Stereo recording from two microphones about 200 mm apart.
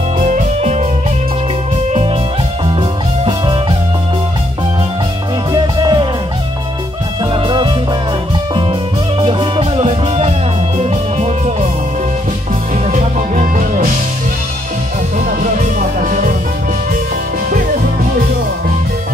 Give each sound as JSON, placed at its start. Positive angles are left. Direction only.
{"t": 0.3, "sound": "music", "side_deg": -35}
{"t": 5.5, "sound": "music", "side_deg": -20}
{"t": 7.4, "sound": "music", "side_deg": -25}
{"t": 9.2, "sound": "music", "side_deg": -25}
{"t": 12.9, "sound": "music", "side_deg": -40}
{"t": 16.0, "sound": "music", "side_deg": -40}